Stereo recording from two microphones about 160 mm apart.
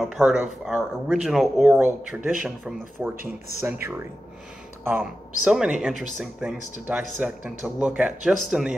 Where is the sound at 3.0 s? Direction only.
15° right (ahead or behind).